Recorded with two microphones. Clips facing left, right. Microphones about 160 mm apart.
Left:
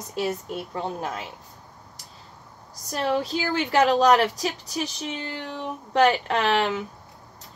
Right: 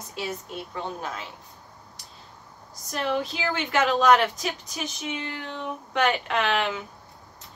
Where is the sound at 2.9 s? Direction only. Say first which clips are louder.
Left 3 dB; 35° left (ahead or behind).